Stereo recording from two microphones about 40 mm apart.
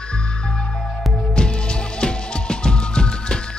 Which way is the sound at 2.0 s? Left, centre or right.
Left.